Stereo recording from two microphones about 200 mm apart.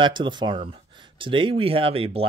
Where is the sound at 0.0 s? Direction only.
25° right (ahead or behind).